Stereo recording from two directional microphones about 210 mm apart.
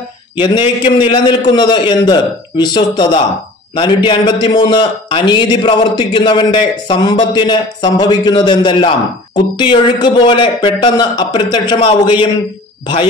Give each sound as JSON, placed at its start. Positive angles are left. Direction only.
{"t": 0.4, "sound": "a man's voice", "side_deg": 20}